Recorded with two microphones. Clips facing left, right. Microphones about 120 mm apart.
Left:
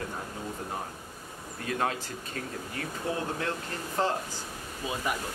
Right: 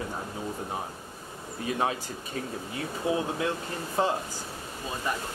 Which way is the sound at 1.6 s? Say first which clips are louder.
Right 2 dB; 10° right (ahead or behind).